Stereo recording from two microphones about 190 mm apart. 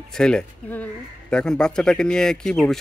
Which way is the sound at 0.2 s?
5° left (ahead or behind).